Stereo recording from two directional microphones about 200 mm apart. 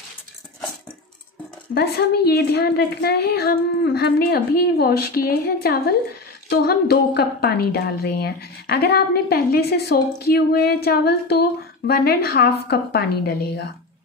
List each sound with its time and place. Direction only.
1.7 s a woman's voice: 55° left (ahead or behind)